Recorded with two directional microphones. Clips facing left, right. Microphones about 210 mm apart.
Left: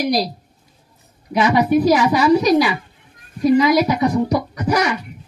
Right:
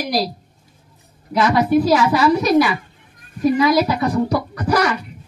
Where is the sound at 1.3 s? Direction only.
15° left (ahead or behind).